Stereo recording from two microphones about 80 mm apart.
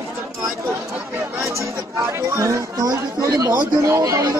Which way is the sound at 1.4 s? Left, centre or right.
Right.